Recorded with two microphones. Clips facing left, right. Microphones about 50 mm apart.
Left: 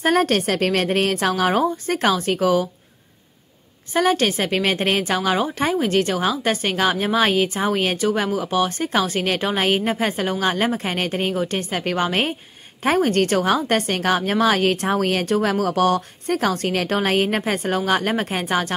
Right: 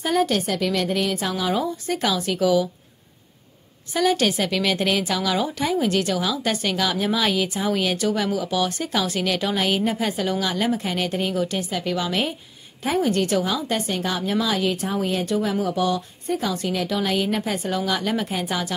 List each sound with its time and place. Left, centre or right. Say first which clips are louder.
0.0 s a woman's voice: left 3 dB; left
1.6 s a woman's voice: left 4 dB; left
3.9 s a woman's voice: left 2 dB; left